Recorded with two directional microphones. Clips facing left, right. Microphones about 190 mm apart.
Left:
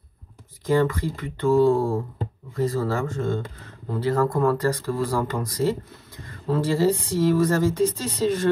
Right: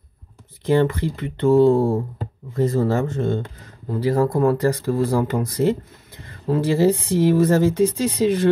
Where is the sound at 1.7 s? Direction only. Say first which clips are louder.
Right 4 dB; 35° right (ahead or behind).